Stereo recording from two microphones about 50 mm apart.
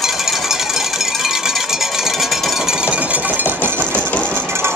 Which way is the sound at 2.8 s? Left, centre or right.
Right.